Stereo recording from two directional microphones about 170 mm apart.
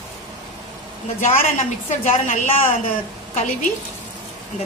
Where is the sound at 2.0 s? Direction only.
45° left (ahead or behind).